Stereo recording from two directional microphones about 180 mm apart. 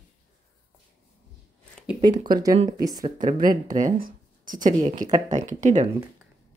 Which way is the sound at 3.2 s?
50° right (ahead or behind).